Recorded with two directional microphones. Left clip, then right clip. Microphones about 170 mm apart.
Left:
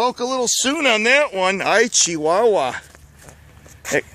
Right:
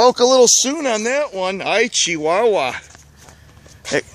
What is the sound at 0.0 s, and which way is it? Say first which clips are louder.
Speech: right 9 dB; 40° right (ahead or behind).